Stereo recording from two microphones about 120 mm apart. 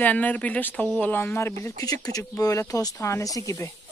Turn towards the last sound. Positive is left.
turn(degrees=25)  # may be behind; listen again after turning